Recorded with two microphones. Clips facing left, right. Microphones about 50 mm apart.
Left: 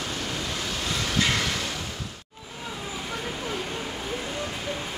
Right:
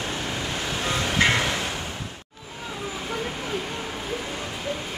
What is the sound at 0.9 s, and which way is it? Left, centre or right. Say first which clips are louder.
Train: right 4 dB; right.